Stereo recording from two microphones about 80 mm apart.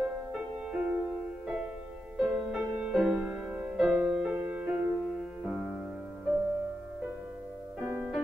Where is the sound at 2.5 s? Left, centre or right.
Right.